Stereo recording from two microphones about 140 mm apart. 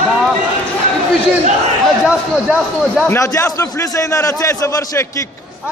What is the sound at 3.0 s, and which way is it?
A man's voice, 20° left (ahead or behind).